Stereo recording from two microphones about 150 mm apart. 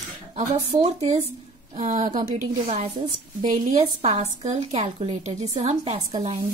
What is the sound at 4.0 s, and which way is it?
A woman's voice, 45° right (ahead or behind).